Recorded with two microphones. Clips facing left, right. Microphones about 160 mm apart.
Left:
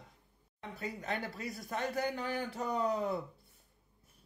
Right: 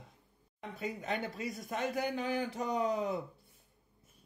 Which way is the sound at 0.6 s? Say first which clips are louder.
Right 2 dB; 20° right (ahead or behind).